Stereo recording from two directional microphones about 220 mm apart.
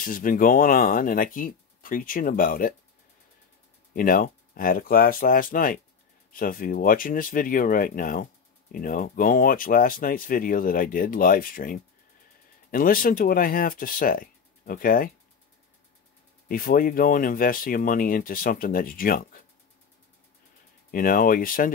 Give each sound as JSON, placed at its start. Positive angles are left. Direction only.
{"t": 0.0, "sound": "speech", "side_deg": 40}
{"t": 3.9, "sound": "speech", "side_deg": 40}
{"t": 16.4, "sound": "speech", "side_deg": 40}
{"t": 20.9, "sound": "speech", "side_deg": 40}